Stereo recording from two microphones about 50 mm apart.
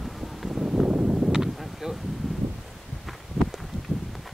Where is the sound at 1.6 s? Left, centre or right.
Centre.